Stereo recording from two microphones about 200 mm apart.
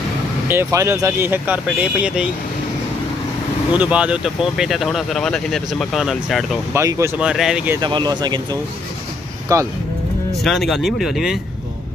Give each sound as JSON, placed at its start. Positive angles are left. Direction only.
{"t": 0.5, "sound": "speech", "side_deg": -15}
{"t": 3.7, "sound": "speech", "side_deg": -5}
{"t": 6.7, "sound": "speech", "side_deg": -15}
{"t": 7.8, "sound": "speech", "side_deg": -20}
{"t": 10.3, "sound": "speech", "side_deg": 0}